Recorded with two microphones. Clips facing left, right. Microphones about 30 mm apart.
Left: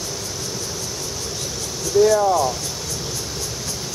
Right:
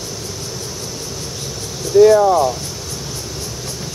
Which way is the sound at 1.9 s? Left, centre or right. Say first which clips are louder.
Right 6 dB; centre.